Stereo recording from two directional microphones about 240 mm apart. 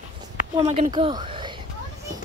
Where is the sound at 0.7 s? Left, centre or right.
Right.